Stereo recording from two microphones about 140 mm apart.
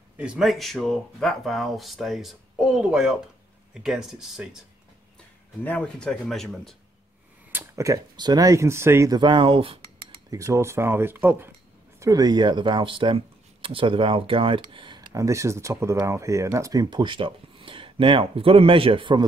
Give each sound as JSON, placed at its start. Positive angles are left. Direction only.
{"t": 0.2, "sound": "speech", "side_deg": -5}
{"t": 5.6, "sound": "speech", "side_deg": 10}
{"t": 7.5, "sound": "speech", "side_deg": -20}
{"t": 9.2, "sound": "speech", "side_deg": -35}
{"t": 10.3, "sound": "speech", "side_deg": -20}
{"t": 12.0, "sound": "speech", "side_deg": -25}